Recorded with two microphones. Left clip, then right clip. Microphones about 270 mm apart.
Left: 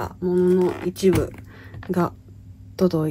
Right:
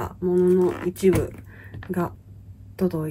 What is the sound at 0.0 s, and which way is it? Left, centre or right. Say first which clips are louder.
Speech: even; centre.